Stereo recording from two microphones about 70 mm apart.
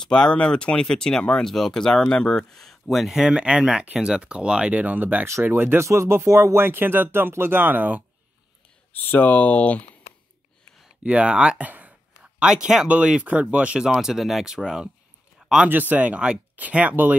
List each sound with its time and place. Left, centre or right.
0.0 s speech: centre; by 8.0 s right
8.9 s speech: left
11.1 s speech: centre
12.2 s speech: centre
13.8 s speech: centre
15.6 s speech: right